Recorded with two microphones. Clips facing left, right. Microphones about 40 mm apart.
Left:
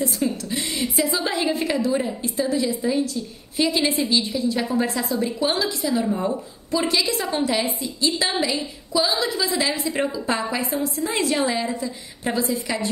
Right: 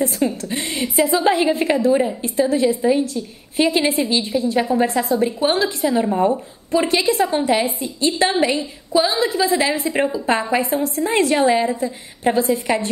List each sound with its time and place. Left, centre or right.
0.0 s a woman's voice: right
1.9 s a woman's voice: right
2.2 s a woman's voice: right